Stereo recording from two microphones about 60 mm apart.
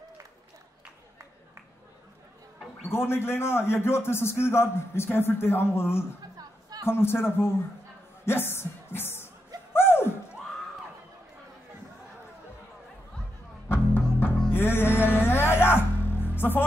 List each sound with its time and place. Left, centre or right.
2.9 s a man's voice: left
8.3 s music: left
9.7 s a sound: left
13.7 s music: left